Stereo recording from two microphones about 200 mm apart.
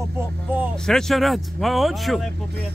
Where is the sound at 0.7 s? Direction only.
Centre (ahead or behind).